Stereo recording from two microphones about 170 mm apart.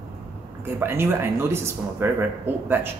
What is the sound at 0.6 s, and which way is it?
Speech, 15° right (ahead or behind).